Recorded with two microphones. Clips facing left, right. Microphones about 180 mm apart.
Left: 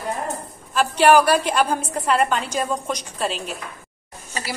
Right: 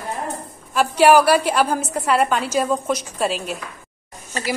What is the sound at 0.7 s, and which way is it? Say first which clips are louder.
A woman's voice: right 2 dB; 10° right (ahead or behind).